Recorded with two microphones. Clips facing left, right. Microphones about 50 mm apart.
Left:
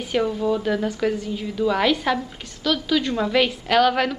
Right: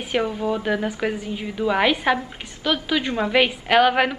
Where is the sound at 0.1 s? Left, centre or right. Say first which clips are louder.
Left 1 dB; centre.